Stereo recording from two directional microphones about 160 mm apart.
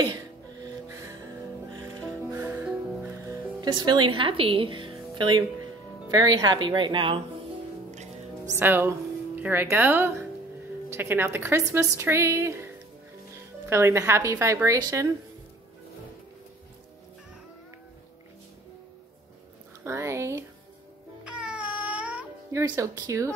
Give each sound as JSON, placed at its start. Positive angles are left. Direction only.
{"t": 0.0, "sound": "music", "side_deg": -25}
{"t": 6.0, "sound": "a woman's voice", "side_deg": -25}
{"t": 8.5, "sound": "a woman's voice", "side_deg": -15}
{"t": 13.7, "sound": "a woman's voice", "side_deg": -15}
{"t": 19.8, "sound": "a sound", "side_deg": -15}
{"t": 21.2, "sound": "music", "side_deg": -5}
{"t": 22.6, "sound": "a woman's voice", "side_deg": -20}